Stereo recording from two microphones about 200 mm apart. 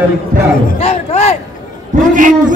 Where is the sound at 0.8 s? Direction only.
30° left (ahead or behind).